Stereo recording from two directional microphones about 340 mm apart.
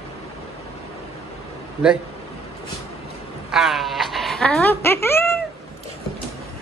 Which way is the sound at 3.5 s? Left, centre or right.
Centre.